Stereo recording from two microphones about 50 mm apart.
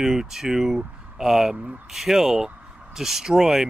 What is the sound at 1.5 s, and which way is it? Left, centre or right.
Speech, right.